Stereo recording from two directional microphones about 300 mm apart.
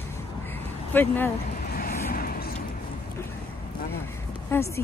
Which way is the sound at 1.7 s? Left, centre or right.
Left.